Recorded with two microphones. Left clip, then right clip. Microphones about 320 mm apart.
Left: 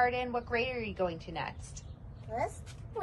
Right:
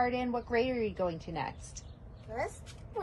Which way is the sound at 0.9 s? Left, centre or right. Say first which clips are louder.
Even; centre.